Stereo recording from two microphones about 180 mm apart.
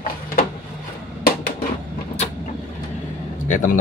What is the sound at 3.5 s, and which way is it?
Speech, 45° left (ahead or behind).